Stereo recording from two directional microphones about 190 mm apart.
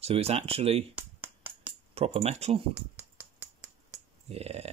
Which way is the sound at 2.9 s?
10° right (ahead or behind).